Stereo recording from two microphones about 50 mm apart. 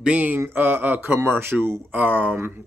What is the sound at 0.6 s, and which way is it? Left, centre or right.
Speech, right.